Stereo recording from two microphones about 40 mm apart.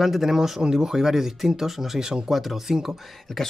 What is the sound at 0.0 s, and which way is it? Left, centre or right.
Speech, centre.